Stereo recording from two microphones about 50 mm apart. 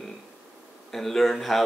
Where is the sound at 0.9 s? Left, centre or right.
Centre.